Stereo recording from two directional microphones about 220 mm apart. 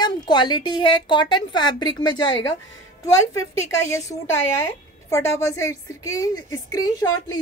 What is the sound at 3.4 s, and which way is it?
A woman's voice, 15° left (ahead or behind).